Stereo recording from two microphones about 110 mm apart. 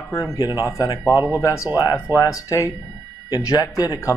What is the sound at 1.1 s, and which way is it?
Speech, 25° right (ahead or behind).